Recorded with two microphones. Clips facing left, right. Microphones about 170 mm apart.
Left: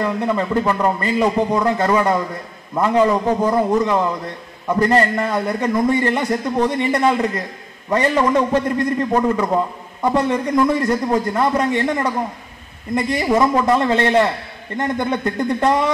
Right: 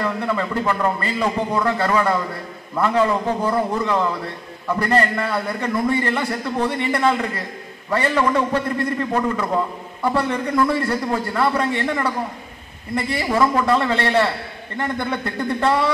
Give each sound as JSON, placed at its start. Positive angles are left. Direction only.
{"t": 0.0, "sound": "a man's voice", "side_deg": 20}